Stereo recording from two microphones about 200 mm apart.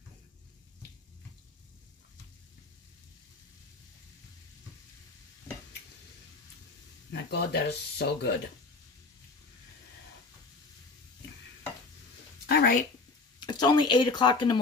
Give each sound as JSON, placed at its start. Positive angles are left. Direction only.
{"t": 7.1, "sound": "speech", "side_deg": 55}
{"t": 12.4, "sound": "a sound", "side_deg": 50}
{"t": 13.4, "sound": "speech", "side_deg": 20}